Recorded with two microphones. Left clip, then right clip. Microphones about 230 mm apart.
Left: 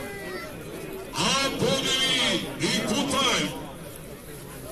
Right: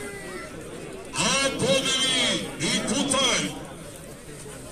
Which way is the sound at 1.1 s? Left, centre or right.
Centre.